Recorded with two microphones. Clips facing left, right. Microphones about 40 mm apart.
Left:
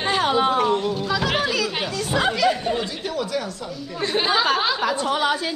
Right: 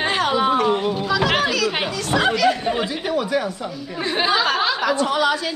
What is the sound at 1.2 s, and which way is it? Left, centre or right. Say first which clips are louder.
Children playing: right 5 dB; centre.